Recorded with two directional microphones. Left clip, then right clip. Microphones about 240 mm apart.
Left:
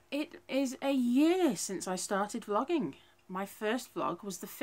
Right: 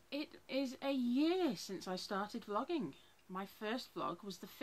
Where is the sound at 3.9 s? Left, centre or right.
Right.